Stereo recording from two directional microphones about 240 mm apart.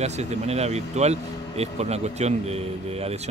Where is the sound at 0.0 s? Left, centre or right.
Right.